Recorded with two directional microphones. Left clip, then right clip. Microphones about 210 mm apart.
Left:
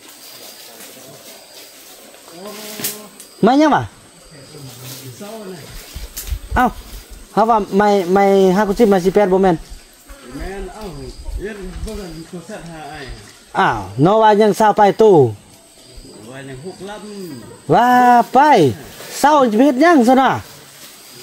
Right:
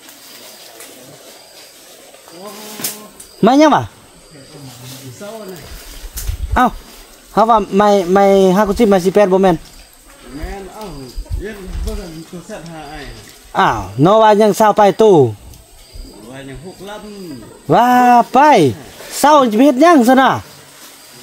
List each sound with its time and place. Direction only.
3.3 s speech: 10° right (ahead or behind)
7.3 s speech: 10° right (ahead or behind)
11.4 s a sound: 35° right (ahead or behind)
13.5 s speech: 5° right (ahead or behind)
16.3 s bird: 35° right (ahead or behind)
17.6 s speech: 5° right (ahead or behind)